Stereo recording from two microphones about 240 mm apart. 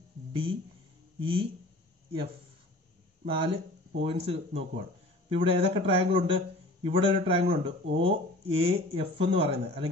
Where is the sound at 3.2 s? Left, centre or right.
Right.